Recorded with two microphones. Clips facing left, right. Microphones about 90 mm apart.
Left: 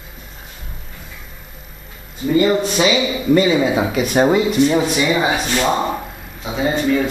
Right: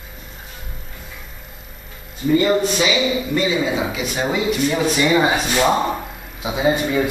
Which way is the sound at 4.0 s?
50° left (ahead or behind).